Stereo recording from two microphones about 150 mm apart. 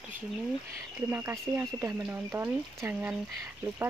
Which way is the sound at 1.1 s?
15° right (ahead or behind).